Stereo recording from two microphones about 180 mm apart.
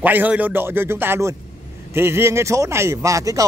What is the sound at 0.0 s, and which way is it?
Speech, 10° right (ahead or behind).